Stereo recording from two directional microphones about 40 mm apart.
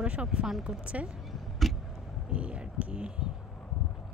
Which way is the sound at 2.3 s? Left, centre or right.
Right.